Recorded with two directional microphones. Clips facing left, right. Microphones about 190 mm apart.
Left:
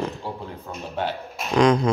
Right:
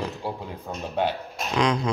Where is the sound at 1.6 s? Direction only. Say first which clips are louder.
Left 6 dB; 45° left (ahead or behind).